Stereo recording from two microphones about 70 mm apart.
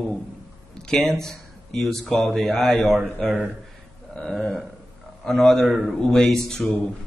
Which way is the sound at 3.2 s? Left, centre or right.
Right.